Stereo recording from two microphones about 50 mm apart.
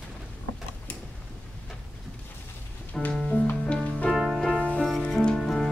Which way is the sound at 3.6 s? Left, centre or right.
Left.